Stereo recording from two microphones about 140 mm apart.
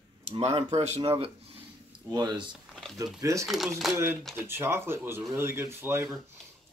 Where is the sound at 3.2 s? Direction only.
25° right (ahead or behind).